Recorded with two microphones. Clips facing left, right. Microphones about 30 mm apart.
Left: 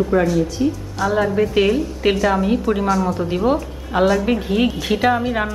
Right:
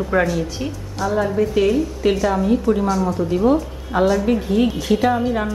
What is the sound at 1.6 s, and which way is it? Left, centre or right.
Speech, left.